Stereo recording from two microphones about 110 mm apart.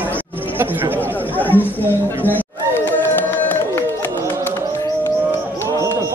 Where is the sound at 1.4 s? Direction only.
15° left (ahead or behind).